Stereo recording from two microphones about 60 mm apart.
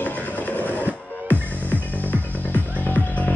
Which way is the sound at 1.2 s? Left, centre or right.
Left.